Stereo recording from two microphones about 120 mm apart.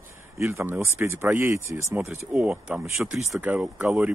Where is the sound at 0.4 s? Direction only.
20° right (ahead or behind).